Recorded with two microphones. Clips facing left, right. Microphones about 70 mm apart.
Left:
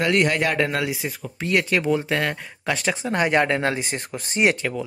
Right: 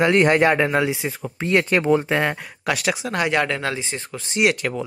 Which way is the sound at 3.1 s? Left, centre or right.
Left.